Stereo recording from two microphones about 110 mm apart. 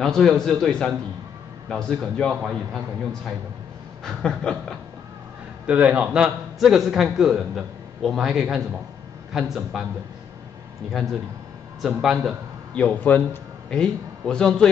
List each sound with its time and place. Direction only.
0.0 s a man's voice: 5° left (ahead or behind)
4.0 s a sound: 5° left (ahead or behind)
5.7 s a man's voice: 10° right (ahead or behind)
11.8 s a man's voice: 5° right (ahead or behind)
12.7 s a man's voice: 10° left (ahead or behind)